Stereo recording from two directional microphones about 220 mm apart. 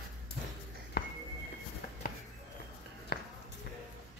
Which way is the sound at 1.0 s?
45° left (ahead or behind).